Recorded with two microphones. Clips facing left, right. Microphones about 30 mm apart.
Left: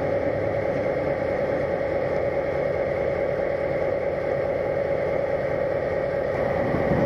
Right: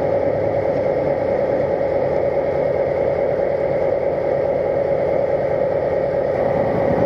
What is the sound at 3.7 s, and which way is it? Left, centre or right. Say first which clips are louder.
Vehicle: right 6 dB; right.